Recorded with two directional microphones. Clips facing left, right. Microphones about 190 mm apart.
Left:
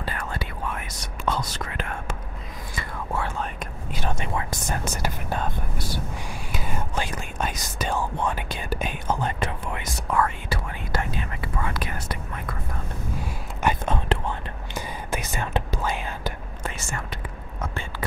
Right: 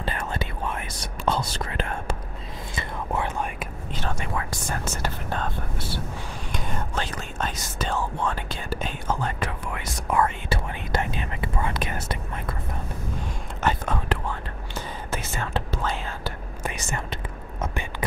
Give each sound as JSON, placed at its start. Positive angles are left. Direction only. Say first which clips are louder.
{"t": 0.0, "sound": "whispering", "louder": "right 2 dB", "side_deg": -25}
{"t": 2.7, "sound": "whispering", "louder": "right 1 dB", "side_deg": -20}
{"t": 4.1, "sound": "speech", "louder": "left 2 dB", "side_deg": 20}
{"t": 6.5, "sound": "speech", "louder": "left 1 dB", "side_deg": 10}
{"t": 10.0, "sound": "whispering", "louder": "right 1 dB", "side_deg": -20}
{"t": 13.8, "sound": "whispering", "louder": "left 2 dB", "side_deg": 20}
{"t": 16.6, "sound": "whispering", "louder": "right 2 dB", "side_deg": -20}